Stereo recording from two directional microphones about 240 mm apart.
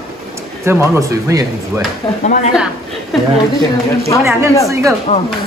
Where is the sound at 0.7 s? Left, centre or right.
Centre.